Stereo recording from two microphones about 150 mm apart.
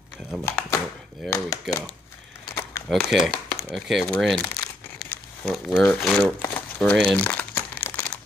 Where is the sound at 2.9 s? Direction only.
Centre (ahead or behind).